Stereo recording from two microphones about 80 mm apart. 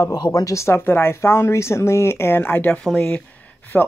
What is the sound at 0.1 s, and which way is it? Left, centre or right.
Speech, left.